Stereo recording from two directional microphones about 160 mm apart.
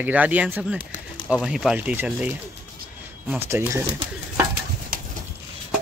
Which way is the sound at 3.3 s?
10° right (ahead or behind).